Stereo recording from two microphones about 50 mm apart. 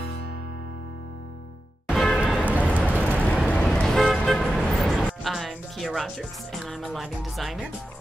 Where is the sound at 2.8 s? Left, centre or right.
Left.